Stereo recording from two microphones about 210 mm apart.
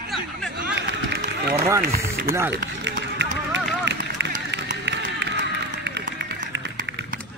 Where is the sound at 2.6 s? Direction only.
55° right (ahead or behind).